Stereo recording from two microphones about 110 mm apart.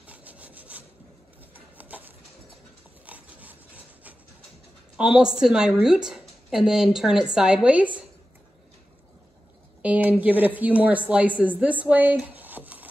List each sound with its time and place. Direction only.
0.0 s rub: 15° right (ahead or behind)
1.5 s a sound: 15° right (ahead or behind)
3.1 s rub: 15° right (ahead or behind)
4.9 s a woman's voice: 5° right (ahead or behind)
9.8 s a woman's voice: 15° right (ahead or behind)